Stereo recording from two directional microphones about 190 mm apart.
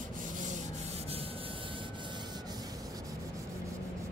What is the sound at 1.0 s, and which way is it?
Rub, 30° right (ahead or behind).